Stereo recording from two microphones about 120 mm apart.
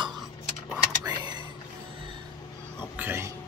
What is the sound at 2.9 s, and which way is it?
Music, 20° right (ahead or behind).